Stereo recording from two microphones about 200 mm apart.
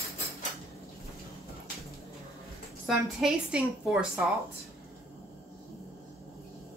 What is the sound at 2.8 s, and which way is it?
Speech, 5° right (ahead or behind).